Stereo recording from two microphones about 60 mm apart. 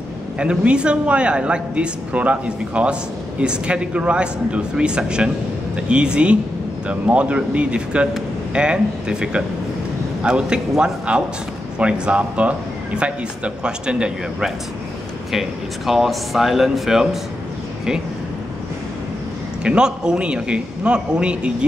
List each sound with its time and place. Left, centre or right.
0.4 s speech: centre
15.3 s speech: centre
19.6 s speech: centre